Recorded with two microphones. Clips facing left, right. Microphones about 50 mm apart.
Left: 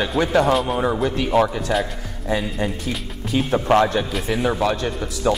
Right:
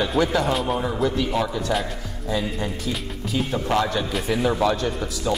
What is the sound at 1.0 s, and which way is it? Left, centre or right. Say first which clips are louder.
Speech: left 4 dB; left.